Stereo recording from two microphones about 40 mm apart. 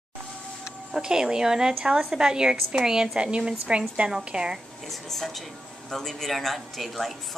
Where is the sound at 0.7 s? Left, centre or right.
Centre.